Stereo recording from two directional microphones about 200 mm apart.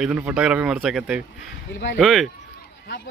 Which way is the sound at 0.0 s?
5° right (ahead or behind).